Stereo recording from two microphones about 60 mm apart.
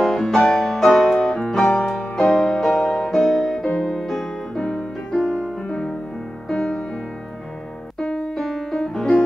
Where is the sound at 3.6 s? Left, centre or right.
Centre.